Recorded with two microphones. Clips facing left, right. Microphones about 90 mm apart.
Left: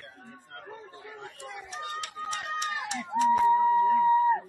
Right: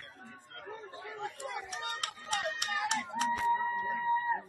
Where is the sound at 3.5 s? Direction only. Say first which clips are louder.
Left 10 dB; 35° left (ahead or behind).